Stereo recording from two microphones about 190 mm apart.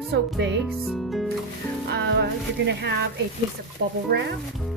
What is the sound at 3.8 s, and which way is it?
Speech, 70° right (ahead or behind).